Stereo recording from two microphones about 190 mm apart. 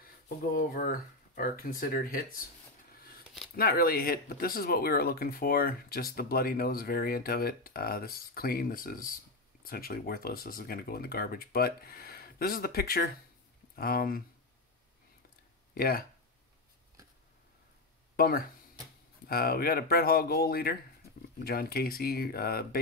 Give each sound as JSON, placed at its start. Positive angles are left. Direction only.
{"t": 0.6, "sound": "speech", "side_deg": 45}
{"t": 3.5, "sound": "speech", "side_deg": 50}
{"t": 15.7, "sound": "speech", "side_deg": 50}
{"t": 18.1, "sound": "speech", "side_deg": 50}